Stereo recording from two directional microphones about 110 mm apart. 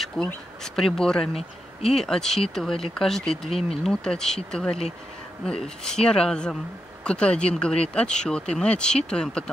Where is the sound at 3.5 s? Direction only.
65° left (ahead or behind).